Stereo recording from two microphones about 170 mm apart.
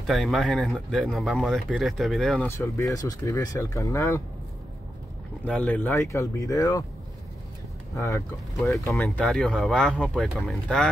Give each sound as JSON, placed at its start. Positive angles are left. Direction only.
{"t": 0.0, "sound": "speech", "side_deg": 0}
{"t": 2.4, "sound": "speech", "side_deg": 15}
{"t": 5.4, "sound": "speech", "side_deg": 10}
{"t": 7.9, "sound": "speech", "side_deg": 20}
{"t": 9.0, "sound": "speech", "side_deg": 0}